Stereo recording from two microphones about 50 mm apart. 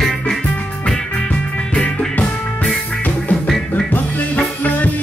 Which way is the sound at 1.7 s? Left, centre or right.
Left.